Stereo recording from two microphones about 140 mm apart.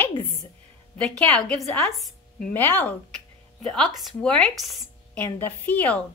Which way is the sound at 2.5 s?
15° left (ahead or behind).